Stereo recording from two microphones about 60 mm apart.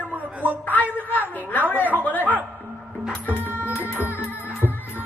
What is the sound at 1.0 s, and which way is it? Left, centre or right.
Speech, left.